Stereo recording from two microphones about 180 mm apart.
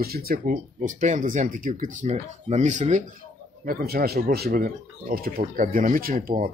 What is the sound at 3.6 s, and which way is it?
Speech, 55° right (ahead or behind).